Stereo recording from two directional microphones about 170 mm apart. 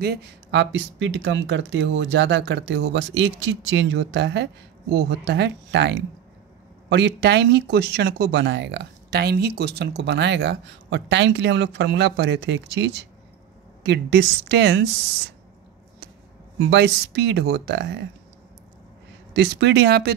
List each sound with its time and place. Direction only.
0.0 s speech: 75° right (ahead or behind)
16.5 s speech: 90° right
19.3 s speech: 80° right